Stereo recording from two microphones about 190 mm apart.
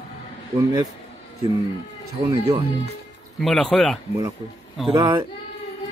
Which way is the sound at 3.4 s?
Centre (ahead or behind).